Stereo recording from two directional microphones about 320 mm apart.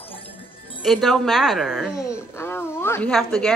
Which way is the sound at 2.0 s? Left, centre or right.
Centre.